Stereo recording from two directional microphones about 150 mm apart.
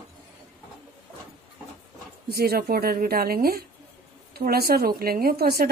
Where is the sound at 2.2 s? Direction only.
90° right.